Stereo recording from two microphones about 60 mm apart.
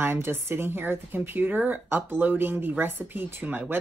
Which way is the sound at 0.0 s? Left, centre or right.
Right.